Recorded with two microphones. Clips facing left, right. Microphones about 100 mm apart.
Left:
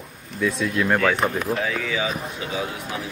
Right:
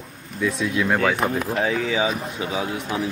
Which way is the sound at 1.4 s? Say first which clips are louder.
Right 2 dB; 30° right (ahead or behind).